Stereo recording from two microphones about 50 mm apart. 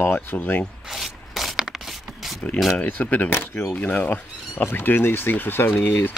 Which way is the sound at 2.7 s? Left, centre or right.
Left.